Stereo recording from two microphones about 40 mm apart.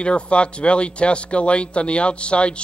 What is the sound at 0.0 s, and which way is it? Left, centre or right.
A man's voice, left.